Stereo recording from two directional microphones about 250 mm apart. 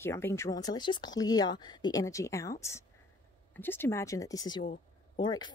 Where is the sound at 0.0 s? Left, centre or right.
Centre.